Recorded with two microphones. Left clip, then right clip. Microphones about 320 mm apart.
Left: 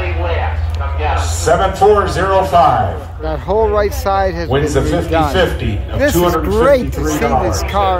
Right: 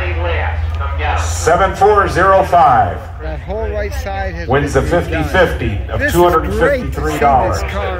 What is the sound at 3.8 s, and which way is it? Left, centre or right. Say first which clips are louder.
Music: left 7 dB; centre.